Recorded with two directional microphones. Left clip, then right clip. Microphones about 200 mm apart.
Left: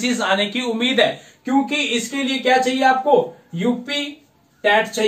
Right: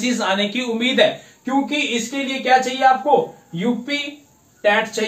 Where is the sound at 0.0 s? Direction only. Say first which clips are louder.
Left 1 dB; 5° right (ahead or behind).